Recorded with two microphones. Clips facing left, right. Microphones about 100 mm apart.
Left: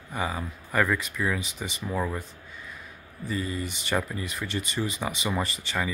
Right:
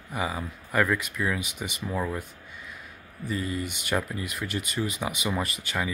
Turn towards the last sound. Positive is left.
turn(degrees=-5)  # may be behind; listen again after turning